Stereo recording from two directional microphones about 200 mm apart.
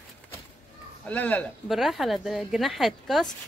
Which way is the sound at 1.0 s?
5° left (ahead or behind).